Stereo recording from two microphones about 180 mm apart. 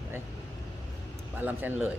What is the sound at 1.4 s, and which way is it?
Speech, 10° right (ahead or behind).